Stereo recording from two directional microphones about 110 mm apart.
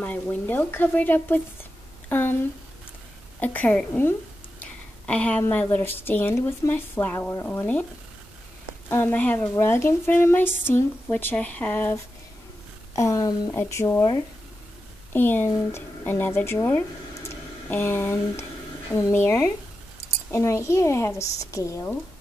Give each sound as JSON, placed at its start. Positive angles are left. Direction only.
{"t": 0.0, "sound": "speech", "side_deg": 15}
{"t": 3.3, "sound": "a woman's voice", "side_deg": 15}
{"t": 4.6, "sound": "a sound", "side_deg": 10}
{"t": 5.4, "sound": "a woman's voice", "side_deg": 20}
{"t": 8.8, "sound": "a woman's voice", "side_deg": 20}
{"t": 12.9, "sound": "a woman's voice", "side_deg": 30}
{"t": 15.1, "sound": "a woman's voice", "side_deg": 20}